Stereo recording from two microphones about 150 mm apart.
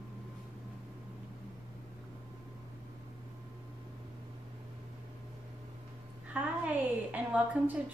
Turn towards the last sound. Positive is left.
turn(degrees=-10)  # may be behind; listen again after turning